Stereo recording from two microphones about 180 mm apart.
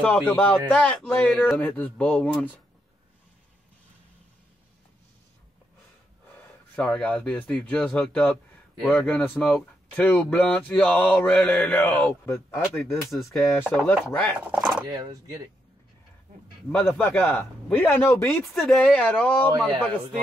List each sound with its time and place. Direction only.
0.3 s speech: 10° left (ahead or behind)
6.7 s speech: 5° left (ahead or behind)
13.1 s speech: centre (ahead or behind)
14.9 s speech: 20° right (ahead or behind)
16.7 s speech: 10° left (ahead or behind)
18.4 s speech: centre (ahead or behind)